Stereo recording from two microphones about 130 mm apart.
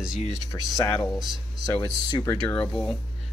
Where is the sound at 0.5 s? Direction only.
25° left (ahead or behind).